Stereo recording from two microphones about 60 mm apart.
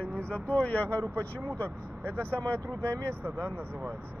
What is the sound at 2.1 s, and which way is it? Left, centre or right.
Speech, left.